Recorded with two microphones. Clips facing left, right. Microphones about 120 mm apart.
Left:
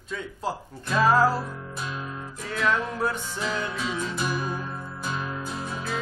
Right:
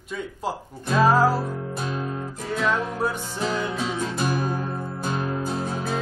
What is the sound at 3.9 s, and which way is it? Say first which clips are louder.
Music: right 3 dB; 45° right (ahead or behind).